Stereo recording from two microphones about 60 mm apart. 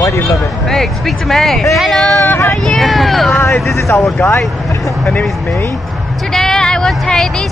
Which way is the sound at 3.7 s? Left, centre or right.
Left.